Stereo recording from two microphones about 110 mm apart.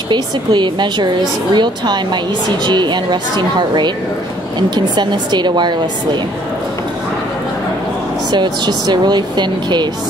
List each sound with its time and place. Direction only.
0.1 s a woman's voice: 45° right (ahead or behind)
8.3 s speech: 40° right (ahead or behind)